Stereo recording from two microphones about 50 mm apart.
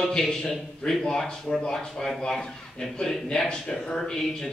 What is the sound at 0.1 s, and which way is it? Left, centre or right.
A man's voice, centre.